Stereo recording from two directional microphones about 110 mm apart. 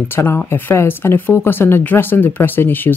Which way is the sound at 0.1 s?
25° left (ahead or behind).